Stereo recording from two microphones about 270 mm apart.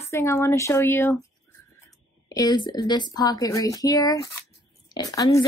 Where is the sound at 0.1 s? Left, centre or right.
Centre.